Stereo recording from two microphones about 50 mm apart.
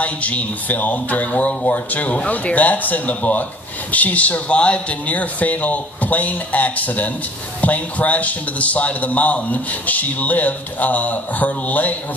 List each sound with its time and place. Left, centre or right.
0.0 s a man's voice: left